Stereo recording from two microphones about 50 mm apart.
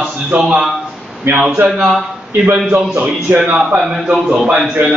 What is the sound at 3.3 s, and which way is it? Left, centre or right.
Speech, right.